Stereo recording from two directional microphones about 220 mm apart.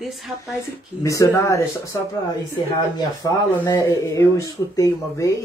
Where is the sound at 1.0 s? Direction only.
15° left (ahead or behind).